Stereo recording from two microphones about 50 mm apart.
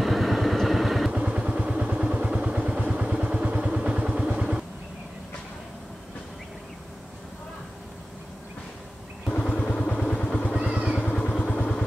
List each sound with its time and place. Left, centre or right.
0.0 s vehicle: centre
1.1 s vehicle: right
9.7 s vehicle: centre
10.6 s vehicle: centre
11.1 s vehicle: centre